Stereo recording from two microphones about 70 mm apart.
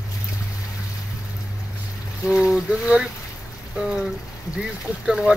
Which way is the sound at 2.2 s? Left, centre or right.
Centre.